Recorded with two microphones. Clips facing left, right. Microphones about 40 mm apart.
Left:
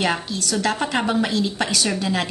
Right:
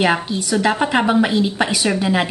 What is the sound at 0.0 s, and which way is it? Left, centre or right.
A woman's voice, centre.